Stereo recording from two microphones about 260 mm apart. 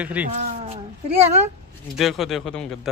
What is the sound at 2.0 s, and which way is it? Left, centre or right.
Speech, centre.